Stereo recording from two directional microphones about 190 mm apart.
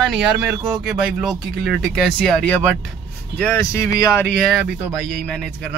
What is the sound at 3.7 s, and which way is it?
Speech, 15° left (ahead or behind).